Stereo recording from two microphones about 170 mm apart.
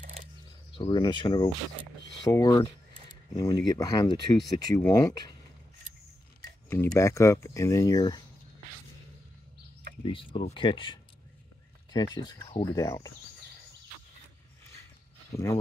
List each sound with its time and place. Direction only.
0.0 s mechanisms: 50° right (ahead or behind)
0.7 s speech: 25° left (ahead or behind)
6.7 s speech: 15° left (ahead or behind)
10.0 s speech: 30° left (ahead or behind)
15.3 s speech: 15° left (ahead or behind)